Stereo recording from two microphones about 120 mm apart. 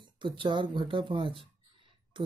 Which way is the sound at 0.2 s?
40° right (ahead or behind).